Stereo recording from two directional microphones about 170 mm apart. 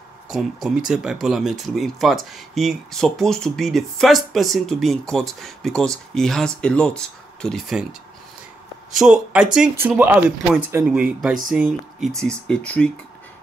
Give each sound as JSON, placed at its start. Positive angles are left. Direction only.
{"t": 0.3, "sound": "speech", "side_deg": 0}
{"t": 8.9, "sound": "speech", "side_deg": -5}